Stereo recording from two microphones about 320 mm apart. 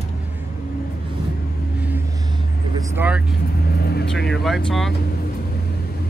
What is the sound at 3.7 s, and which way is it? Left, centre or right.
Speech, left.